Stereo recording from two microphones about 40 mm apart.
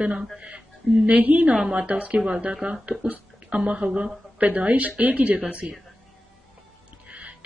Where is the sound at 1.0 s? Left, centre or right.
Right.